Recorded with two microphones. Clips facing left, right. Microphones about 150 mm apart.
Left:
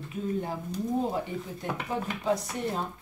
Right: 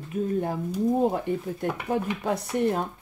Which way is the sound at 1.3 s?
55° right (ahead or behind).